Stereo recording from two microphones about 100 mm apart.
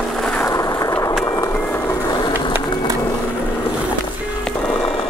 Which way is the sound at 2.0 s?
45° left (ahead or behind).